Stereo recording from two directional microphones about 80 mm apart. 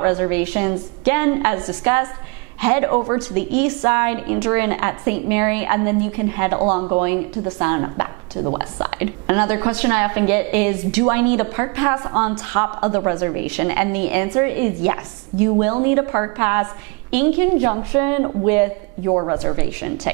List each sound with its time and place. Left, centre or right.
0.0 s a woman's voice: centre
19.4 s a woman's voice: right